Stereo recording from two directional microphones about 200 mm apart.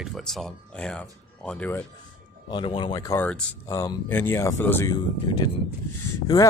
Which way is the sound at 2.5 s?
25° left (ahead or behind).